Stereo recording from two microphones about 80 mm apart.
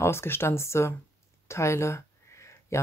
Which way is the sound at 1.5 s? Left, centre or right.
Left.